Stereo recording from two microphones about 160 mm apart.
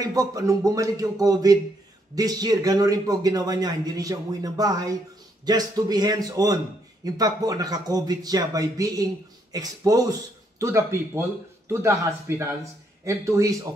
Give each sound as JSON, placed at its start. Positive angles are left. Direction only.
{"t": 0.0, "sound": "a man's voice", "side_deg": -20}